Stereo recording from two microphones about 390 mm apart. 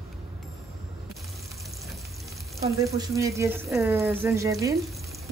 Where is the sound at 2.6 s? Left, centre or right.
Centre.